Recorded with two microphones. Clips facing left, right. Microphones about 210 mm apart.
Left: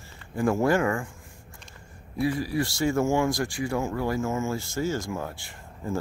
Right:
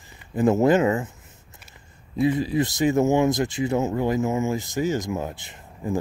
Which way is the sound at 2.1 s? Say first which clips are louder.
Right 5 dB; 20° right (ahead or behind).